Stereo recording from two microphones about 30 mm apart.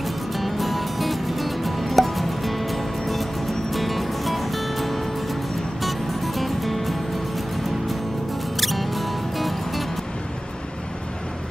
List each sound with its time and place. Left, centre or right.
0.4 s music: centre
8.5 s music: centre